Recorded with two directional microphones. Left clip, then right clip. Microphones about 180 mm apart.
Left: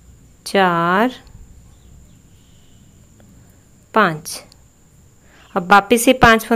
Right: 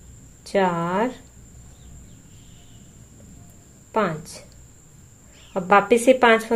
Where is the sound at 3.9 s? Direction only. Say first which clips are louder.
Left 8 dB; 35° left (ahead or behind).